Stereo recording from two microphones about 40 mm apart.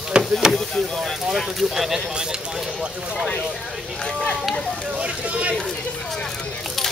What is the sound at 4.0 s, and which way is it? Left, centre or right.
Speech, centre.